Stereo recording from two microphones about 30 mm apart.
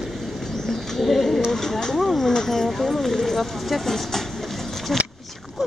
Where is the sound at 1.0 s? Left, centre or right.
Centre.